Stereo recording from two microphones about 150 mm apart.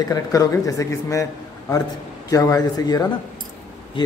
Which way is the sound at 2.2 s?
25° left (ahead or behind).